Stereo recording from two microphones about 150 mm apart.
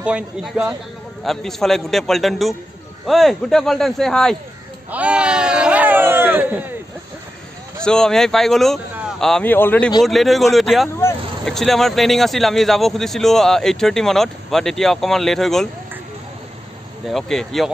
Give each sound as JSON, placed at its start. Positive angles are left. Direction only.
{"t": 0.0, "sound": "a man's voice", "side_deg": -5}
{"t": 4.9, "sound": "a sound", "side_deg": -10}
{"t": 7.8, "sound": "a man's voice", "side_deg": 5}
{"t": 10.0, "sound": "a man's voice", "side_deg": 0}
{"t": 17.1, "sound": "a man's voice", "side_deg": 5}